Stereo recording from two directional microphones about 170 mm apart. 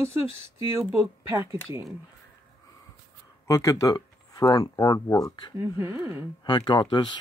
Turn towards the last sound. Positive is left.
turn(degrees=30)  # may be behind; listen again after turning